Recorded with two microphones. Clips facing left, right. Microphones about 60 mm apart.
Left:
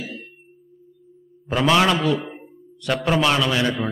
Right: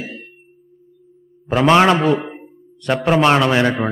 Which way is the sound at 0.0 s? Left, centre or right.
Right.